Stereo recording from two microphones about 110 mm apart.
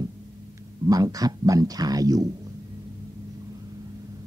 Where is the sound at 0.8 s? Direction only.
35° right (ahead or behind).